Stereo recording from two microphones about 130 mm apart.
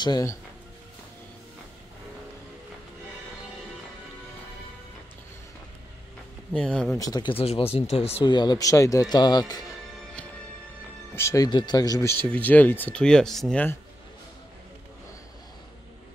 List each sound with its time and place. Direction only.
0.0 s speech: 30° left (ahead or behind)
6.5 s speech: 5° left (ahead or behind)
7.0 s a man's voice: 30° left (ahead or behind)
7.3 s speech: 50° left (ahead or behind)
8.3 s a man's voice: 35° left (ahead or behind)
11.1 s speech: 25° left (ahead or behind)
12.2 s speech: 10° left (ahead or behind)